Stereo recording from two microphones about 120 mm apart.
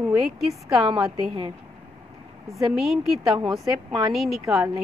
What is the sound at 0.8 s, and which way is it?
Speech, 50° right (ahead or behind).